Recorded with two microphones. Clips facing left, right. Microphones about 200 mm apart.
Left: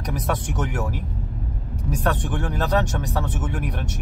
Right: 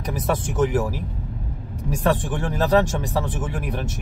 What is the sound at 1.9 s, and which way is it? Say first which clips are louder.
Speech: right 3 dB; 10° right (ahead or behind).